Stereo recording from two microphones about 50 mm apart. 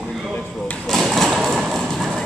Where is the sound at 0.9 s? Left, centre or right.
Centre.